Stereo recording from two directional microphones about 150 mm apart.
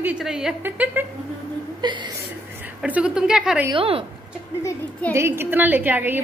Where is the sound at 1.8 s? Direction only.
30° right (ahead or behind).